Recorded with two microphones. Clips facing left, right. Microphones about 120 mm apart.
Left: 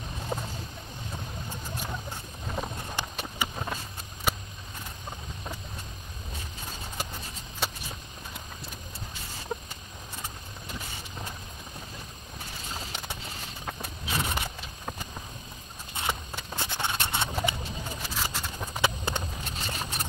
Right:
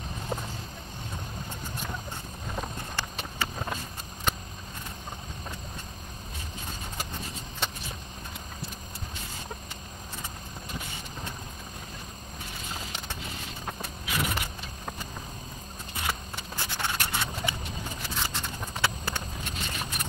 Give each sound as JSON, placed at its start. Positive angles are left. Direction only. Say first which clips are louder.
{"t": 3.0, "sound": "clip-clop", "louder": "left 1 dB", "side_deg": 15}
{"t": 4.3, "sound": "vehicle", "louder": "left 1 dB", "side_deg": 10}
{"t": 7.6, "sound": "walk", "louder": "left 1 dB", "side_deg": 5}
{"t": 14.0, "sound": "vehicle", "louder": "even", "side_deg": 30}
{"t": 16.0, "sound": "a sound", "louder": "left 1 dB", "side_deg": 20}
{"t": 18.1, "sound": "a sound", "louder": "even", "side_deg": 5}
{"t": 18.8, "sound": "clip-clop", "louder": "left 2 dB", "side_deg": 20}
{"t": 19.5, "sound": "vehicle", "louder": "even", "side_deg": 30}